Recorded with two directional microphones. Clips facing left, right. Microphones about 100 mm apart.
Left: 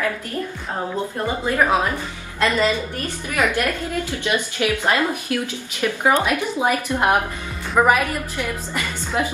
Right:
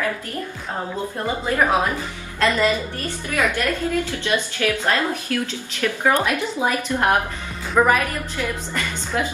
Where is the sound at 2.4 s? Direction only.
15° left (ahead or behind).